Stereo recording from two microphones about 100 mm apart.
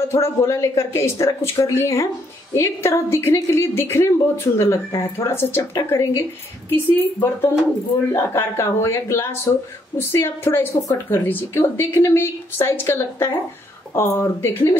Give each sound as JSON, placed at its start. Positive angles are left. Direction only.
{"t": 0.1, "sound": "a woman's voice", "side_deg": 30}